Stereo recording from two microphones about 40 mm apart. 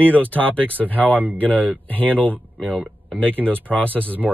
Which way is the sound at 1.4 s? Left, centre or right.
Left.